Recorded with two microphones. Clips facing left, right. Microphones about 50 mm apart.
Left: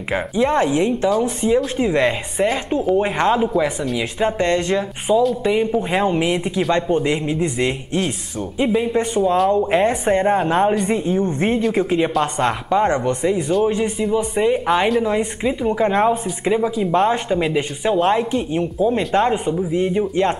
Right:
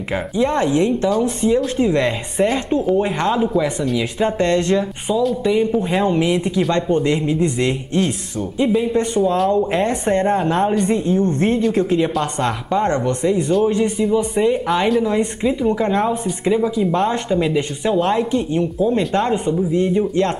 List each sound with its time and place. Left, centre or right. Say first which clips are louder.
0.1 s speech: left 1 dB; centre
3.0 s speech: left 1 dB; centre